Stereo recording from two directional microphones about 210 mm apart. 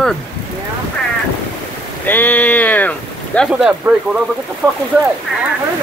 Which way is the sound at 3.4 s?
5° right (ahead or behind).